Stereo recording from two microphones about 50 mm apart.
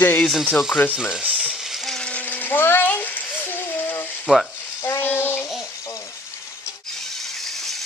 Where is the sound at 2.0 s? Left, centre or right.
Left.